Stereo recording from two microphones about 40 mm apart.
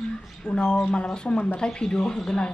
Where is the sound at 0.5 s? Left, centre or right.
Left.